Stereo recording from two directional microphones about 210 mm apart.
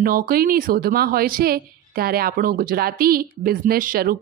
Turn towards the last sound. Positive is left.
turn(degrees=-45)  # may be behind; listen again after turning